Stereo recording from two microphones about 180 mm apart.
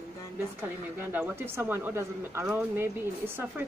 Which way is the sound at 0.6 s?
10° right (ahead or behind).